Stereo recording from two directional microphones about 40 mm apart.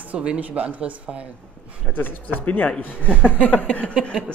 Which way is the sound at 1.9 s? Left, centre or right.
Left.